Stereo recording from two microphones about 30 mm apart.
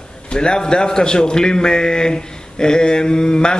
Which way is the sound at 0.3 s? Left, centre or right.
Left.